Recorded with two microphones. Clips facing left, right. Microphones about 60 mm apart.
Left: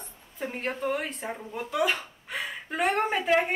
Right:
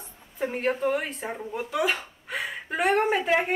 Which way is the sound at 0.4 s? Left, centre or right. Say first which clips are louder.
Right 5 dB; centre.